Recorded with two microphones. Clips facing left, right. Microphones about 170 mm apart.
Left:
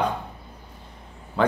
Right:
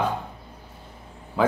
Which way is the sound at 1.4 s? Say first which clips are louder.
Even; 5° right (ahead or behind).